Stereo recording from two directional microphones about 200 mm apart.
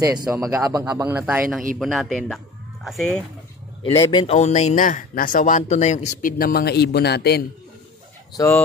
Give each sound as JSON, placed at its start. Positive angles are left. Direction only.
{"t": 0.0, "sound": "a man's voice", "side_deg": -20}
{"t": 3.8, "sound": "a man's voice", "side_deg": 25}
{"t": 4.4, "sound": "speech", "side_deg": 35}
{"t": 8.4, "sound": "speech", "side_deg": 15}